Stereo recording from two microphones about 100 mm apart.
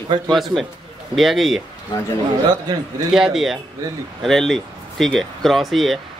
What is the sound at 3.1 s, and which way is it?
Speech, 5° right (ahead or behind).